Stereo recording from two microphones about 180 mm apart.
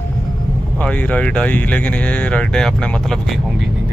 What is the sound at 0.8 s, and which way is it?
Speech, 10° left (ahead or behind).